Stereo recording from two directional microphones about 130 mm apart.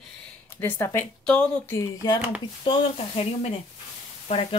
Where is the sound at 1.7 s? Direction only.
25° left (ahead or behind).